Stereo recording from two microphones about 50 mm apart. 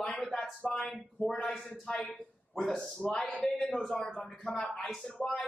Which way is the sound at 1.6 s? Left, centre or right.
Centre.